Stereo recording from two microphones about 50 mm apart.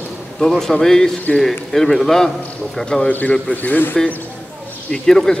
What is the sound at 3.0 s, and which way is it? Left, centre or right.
Speech, left.